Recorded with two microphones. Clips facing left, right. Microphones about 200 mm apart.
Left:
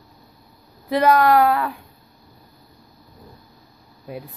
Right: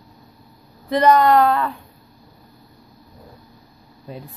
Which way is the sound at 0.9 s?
5° left (ahead or behind).